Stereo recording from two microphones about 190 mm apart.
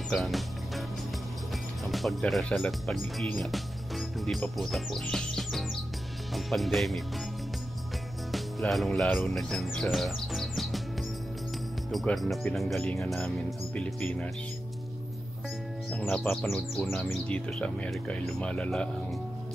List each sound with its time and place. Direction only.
0.1 s music: centre (ahead or behind)
1.9 s speech: centre (ahead or behind)
8.3 s music: centre (ahead or behind)
11.9 s speech: centre (ahead or behind)
15.9 s speech: 5° left (ahead or behind)